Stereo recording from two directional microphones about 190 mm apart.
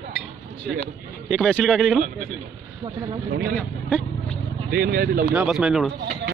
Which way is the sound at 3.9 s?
5° left (ahead or behind).